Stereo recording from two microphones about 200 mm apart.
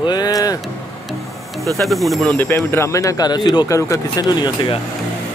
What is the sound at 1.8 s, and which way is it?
Speech, centre (ahead or behind).